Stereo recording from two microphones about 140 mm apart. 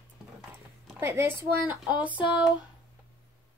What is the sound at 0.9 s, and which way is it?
Speech, 20° right (ahead or behind).